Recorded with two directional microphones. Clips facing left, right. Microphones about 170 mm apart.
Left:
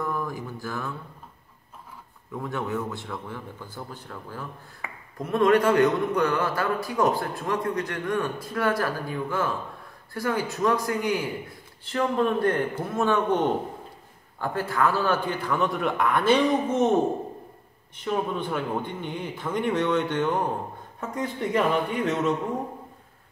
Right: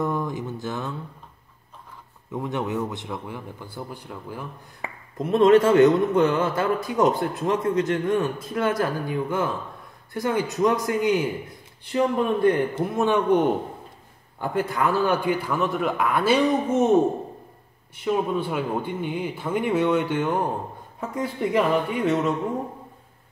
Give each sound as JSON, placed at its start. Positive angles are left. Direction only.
{"t": 0.0, "sound": "speech", "side_deg": -20}
{"t": 2.3, "sound": "speech", "side_deg": -20}
{"t": 17.9, "sound": "speech", "side_deg": -10}